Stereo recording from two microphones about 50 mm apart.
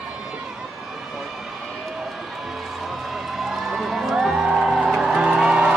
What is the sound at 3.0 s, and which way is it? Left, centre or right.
Music, centre.